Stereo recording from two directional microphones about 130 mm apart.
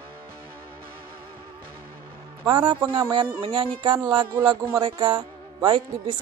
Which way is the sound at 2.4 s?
40° right (ahead or behind).